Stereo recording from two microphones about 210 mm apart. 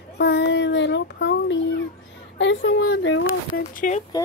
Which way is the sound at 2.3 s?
60° left (ahead or behind).